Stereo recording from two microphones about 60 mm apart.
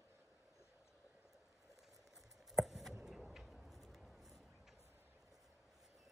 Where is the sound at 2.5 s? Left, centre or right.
Centre.